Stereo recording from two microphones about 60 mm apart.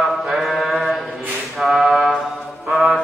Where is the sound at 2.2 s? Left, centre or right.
Centre.